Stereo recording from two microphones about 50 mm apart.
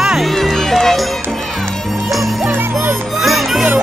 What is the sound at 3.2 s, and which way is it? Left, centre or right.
Music, centre.